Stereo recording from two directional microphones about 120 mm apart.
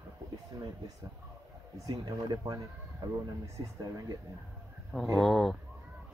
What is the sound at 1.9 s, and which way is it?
Speech, 30° right (ahead or behind).